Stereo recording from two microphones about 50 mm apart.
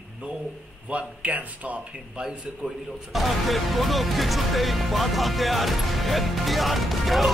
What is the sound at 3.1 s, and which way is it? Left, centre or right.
Speech, centre.